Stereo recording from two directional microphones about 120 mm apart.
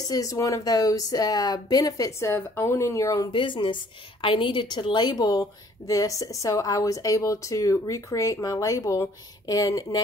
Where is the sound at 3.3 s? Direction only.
45° left (ahead or behind).